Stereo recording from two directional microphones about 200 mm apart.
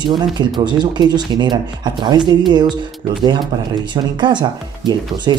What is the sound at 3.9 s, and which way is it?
Speech, 20° right (ahead or behind).